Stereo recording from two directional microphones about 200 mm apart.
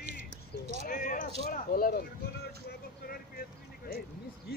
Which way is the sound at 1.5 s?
45° left (ahead or behind).